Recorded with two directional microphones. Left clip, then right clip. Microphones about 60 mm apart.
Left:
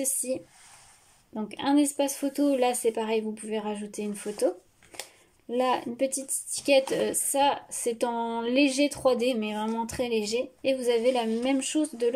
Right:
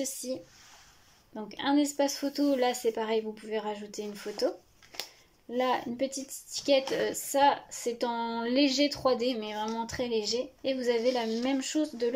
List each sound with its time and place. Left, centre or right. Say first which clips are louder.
0.0 s speech: left 4 dB; left
1.3 s speech: left 3 dB; left
5.5 s speech: left 3 dB; left